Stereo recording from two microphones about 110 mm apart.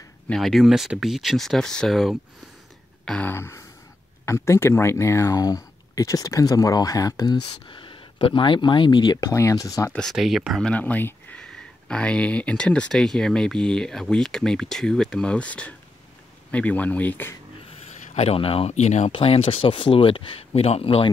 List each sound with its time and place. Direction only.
0.3 s speech: centre (ahead or behind)
3.1 s a sound: 15° left (ahead or behind)
4.3 s speech: 25° left (ahead or behind)
7.4 s speech: 50° left (ahead or behind)
9.3 s speech: 30° left (ahead or behind)
10.1 s speech: 5° right (ahead or behind)
10.7 s speech: 15° left (ahead or behind)
18.1 s speech: 60° left (ahead or behind)